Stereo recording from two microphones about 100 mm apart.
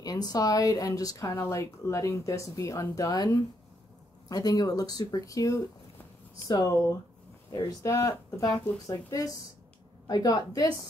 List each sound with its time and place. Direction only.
0.0 s speech: 40° left (ahead or behind)
7.8 s speech: 35° left (ahead or behind)